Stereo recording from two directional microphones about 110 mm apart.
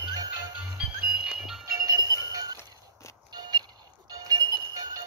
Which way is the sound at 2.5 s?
25° left (ahead or behind).